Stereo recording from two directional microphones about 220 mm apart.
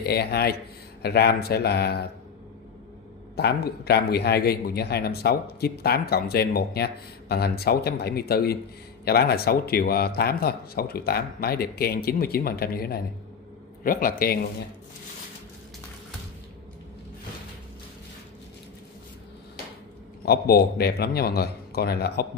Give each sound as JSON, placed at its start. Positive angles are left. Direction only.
{"t": 0.0, "sound": "a man's voice", "side_deg": 45}
{"t": 3.3, "sound": "a man's voice", "side_deg": 45}
{"t": 20.2, "sound": "a man's voice", "side_deg": 45}